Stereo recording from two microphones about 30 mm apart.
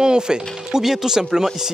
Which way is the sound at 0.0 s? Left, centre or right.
Right.